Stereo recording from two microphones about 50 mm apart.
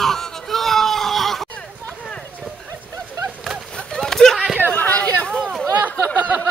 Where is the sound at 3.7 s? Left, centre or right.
Centre.